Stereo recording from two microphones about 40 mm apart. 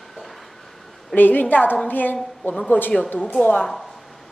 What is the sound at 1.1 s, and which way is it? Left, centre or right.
A woman's voice, left.